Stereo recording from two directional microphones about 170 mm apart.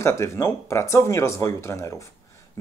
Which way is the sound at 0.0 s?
15° left (ahead or behind).